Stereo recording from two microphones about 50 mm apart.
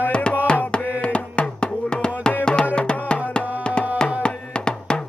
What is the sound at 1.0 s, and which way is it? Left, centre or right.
Music, left.